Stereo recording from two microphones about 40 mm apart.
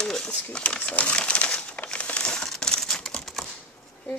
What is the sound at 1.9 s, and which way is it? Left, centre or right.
Crumpling, left.